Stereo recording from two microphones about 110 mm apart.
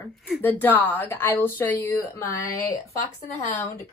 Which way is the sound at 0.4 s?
15° left (ahead or behind).